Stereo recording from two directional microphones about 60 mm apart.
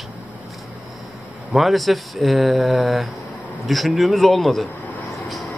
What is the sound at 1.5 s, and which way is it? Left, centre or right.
Speech, centre.